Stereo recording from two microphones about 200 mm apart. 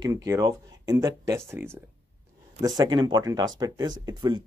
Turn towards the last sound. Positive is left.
turn(degrees=-20)  # may be behind; listen again after turning